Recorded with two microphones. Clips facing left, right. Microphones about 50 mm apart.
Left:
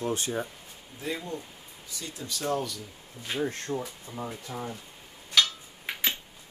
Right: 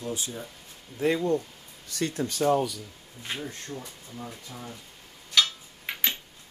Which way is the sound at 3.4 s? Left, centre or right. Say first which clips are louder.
Left 6 dB; left.